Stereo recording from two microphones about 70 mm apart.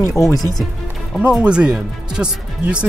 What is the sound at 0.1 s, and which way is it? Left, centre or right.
Speech, left.